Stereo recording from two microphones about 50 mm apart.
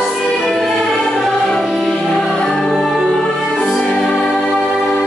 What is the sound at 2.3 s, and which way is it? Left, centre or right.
Music, centre.